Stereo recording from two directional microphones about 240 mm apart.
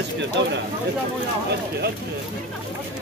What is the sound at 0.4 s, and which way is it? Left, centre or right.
Speech, right.